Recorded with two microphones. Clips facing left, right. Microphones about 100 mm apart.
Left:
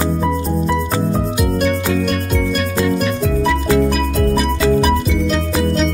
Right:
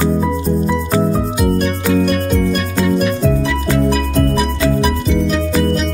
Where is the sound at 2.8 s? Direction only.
Centre (ahead or behind).